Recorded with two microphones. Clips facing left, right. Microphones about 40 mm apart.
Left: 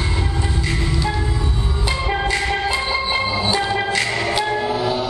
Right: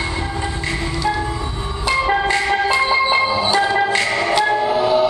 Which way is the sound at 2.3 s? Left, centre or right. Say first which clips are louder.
Right 4 dB; right.